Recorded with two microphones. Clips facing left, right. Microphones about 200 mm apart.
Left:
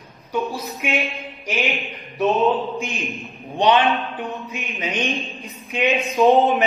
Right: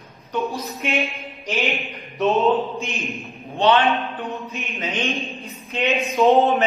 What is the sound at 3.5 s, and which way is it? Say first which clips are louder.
A man's voice: even; 15° left (ahead or behind).